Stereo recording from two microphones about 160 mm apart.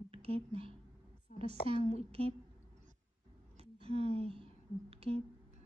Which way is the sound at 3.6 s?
40° right (ahead or behind).